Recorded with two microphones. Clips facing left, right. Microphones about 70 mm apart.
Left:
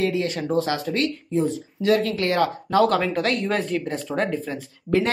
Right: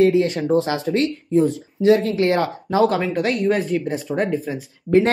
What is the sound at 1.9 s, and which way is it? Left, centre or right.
Speech, right.